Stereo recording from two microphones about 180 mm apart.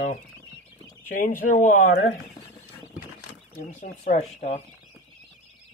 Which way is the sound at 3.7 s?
45° left (ahead or behind).